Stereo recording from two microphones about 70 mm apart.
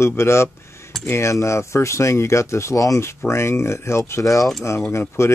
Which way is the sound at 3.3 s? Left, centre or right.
Left.